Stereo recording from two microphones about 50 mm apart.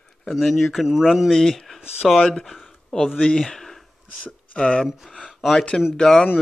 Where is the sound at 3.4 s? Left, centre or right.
Centre.